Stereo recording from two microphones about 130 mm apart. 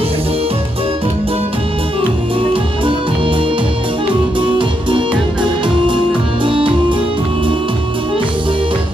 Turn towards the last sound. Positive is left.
turn(degrees=-40)  # may be behind; listen again after turning